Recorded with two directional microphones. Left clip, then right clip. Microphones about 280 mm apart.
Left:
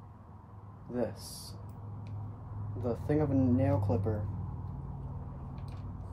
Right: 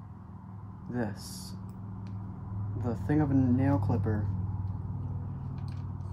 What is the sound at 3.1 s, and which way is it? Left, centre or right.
Speech, centre.